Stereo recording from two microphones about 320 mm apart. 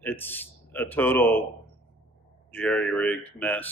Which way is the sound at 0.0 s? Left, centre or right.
Centre.